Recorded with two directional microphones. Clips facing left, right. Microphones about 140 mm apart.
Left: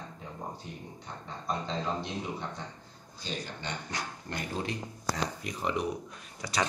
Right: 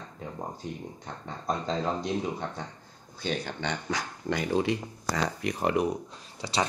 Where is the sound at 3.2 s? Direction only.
65° right (ahead or behind).